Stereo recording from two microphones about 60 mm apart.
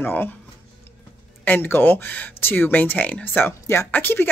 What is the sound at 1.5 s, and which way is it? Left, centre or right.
Speech, left.